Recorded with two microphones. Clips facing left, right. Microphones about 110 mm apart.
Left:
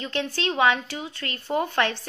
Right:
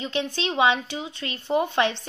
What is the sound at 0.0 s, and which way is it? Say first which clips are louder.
Speech: even; 20° right (ahead or behind).